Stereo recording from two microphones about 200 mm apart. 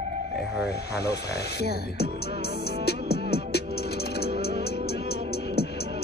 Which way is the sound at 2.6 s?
55° left (ahead or behind).